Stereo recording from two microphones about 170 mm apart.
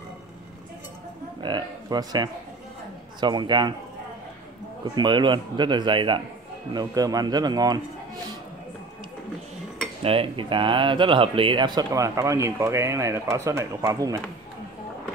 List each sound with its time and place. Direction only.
1.4 s speech: 25° right (ahead or behind)
4.9 s speech: 25° right (ahead or behind)
10.0 s speech: 30° right (ahead or behind)